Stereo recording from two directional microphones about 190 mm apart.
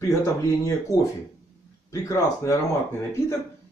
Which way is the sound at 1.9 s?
15° left (ahead or behind).